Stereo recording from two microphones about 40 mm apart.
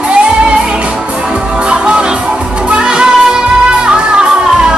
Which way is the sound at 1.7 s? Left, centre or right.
Right.